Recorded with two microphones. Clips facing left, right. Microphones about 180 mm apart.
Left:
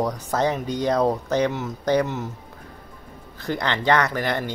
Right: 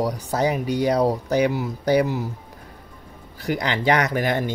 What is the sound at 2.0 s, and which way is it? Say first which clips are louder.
Speech: right 3 dB; 35° right (ahead or behind).